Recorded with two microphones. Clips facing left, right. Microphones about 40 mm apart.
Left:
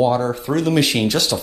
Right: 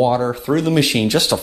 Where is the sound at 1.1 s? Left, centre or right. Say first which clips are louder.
Right 3 dB; right.